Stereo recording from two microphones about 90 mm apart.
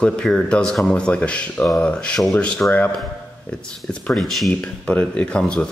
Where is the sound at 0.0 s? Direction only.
10° left (ahead or behind).